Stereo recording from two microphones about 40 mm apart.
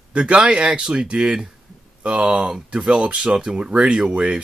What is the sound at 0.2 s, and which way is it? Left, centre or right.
Speech, right.